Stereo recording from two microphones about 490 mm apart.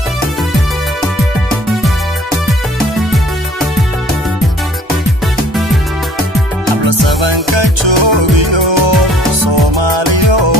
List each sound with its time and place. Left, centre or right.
6.8 s music: right